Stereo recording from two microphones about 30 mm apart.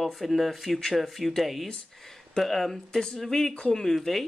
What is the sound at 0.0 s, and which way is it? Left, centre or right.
Speech, centre.